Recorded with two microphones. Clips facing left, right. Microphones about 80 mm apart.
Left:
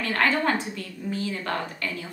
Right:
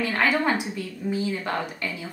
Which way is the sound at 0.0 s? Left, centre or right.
Centre.